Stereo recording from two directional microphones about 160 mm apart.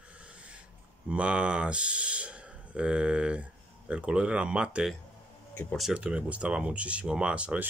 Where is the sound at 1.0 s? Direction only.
5° right (ahead or behind).